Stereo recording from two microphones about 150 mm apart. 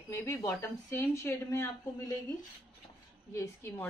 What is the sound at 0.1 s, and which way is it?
Speech, 20° left (ahead or behind).